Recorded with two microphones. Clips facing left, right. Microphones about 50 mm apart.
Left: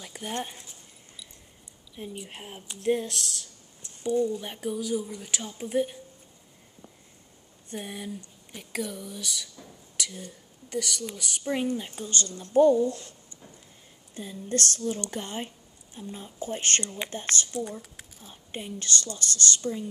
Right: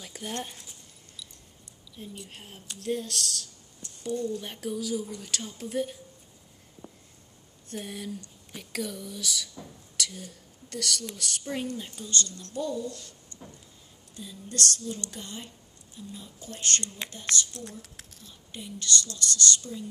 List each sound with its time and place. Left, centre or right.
0.0 s speech: centre
2.0 s speech: left
7.7 s speech: centre
9.9 s whispering: centre
10.7 s speech: centre; by 13.1 s left
13.3 s a sound: centre
14.1 s a woman's voice: left